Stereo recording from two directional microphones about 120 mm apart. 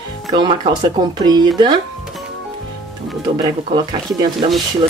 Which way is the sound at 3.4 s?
40° right (ahead or behind).